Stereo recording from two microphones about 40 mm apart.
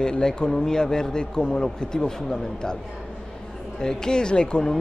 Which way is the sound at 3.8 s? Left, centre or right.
Centre.